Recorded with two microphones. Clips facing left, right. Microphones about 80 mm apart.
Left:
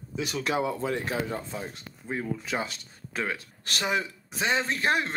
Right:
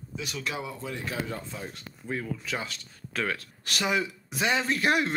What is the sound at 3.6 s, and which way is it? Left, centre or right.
Speech, left.